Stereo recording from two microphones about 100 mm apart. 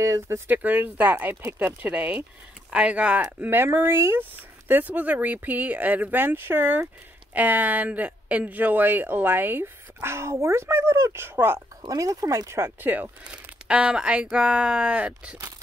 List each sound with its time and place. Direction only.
0.0 s speech: 30° right (ahead or behind)
0.5 s speech: 15° right (ahead or behind)
11.8 s speech: 35° right (ahead or behind); by 15.3 s 10° right (ahead or behind)